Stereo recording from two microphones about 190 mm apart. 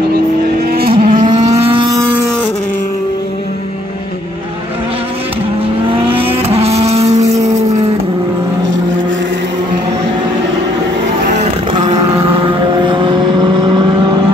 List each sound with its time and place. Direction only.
0.7 s vehicle: 50° right (ahead or behind); by 2.0 s 25° right (ahead or behind)
6.0 s vehicle: 30° right (ahead or behind)
11.3 s vehicle: 35° right (ahead or behind)